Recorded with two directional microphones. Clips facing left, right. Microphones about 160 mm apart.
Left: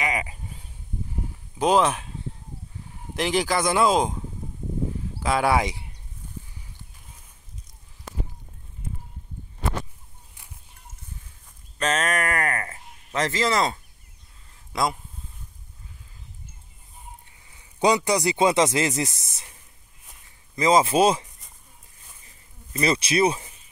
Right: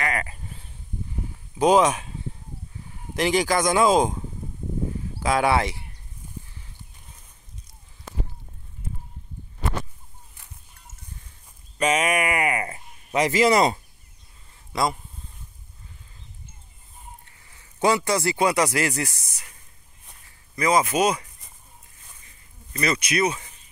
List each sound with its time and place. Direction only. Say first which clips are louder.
0.0 s sheep: even; 15° left (ahead or behind)
1.6 s speech: right 2 dB; centre (ahead or behind)
3.2 s speech: right 2 dB; centre (ahead or behind)
5.2 s speech: right 1 dB; 5° left (ahead or behind)
11.8 s a sound: right 3 dB; 10° right (ahead or behind)
14.5 s a sound: right 1 dB; centre (ahead or behind)
17.2 s a man's voice: even; 15° left (ahead or behind)
20.5 s speech: left 2 dB; 25° left (ahead or behind)
22.7 s speech: left 2 dB; 30° left (ahead or behind)